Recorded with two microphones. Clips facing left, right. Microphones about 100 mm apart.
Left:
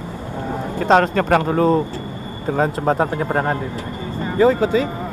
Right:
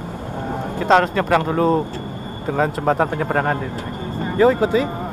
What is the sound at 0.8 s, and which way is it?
Speech, 45° left (ahead or behind).